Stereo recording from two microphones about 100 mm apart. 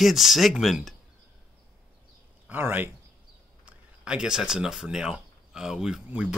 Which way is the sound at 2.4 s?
20° right (ahead or behind).